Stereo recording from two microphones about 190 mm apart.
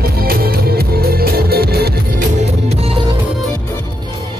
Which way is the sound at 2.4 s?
35° right (ahead or behind).